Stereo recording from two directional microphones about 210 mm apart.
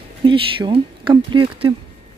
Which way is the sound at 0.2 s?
25° right (ahead or behind).